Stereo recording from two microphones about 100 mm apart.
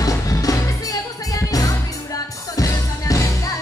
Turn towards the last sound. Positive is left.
turn(degrees=35)  # may be behind; listen again after turning